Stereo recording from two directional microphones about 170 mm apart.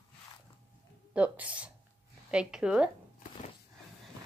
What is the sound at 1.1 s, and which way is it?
Speech, 10° right (ahead or behind).